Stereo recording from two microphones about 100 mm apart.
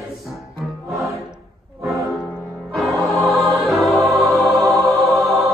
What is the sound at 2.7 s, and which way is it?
Music, centre (ahead or behind).